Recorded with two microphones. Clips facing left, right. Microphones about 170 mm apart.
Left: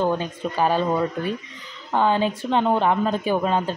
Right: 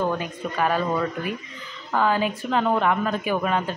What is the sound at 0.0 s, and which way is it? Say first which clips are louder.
Speech: left 3 dB; 30° left (ahead or behind).